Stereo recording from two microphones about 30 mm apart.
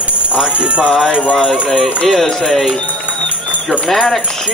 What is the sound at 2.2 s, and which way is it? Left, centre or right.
Speech, centre.